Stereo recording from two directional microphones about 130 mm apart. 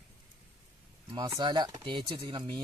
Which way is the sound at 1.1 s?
35° right (ahead or behind).